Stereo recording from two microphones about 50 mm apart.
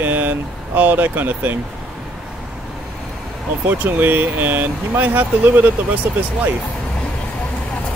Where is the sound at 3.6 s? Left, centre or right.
Right.